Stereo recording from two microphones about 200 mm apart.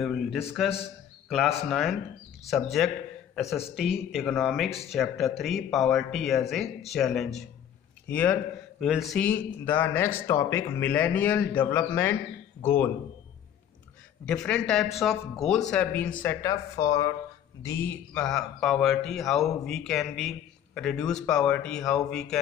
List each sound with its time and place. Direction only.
0.0 s a man's voice: centre (ahead or behind)
14.2 s a man's voice: 5° left (ahead or behind)